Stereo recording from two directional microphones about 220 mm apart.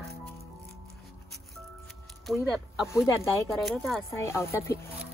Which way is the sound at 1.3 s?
Centre (ahead or behind).